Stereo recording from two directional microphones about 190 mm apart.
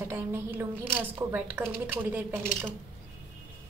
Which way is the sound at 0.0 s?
10° right (ahead or behind).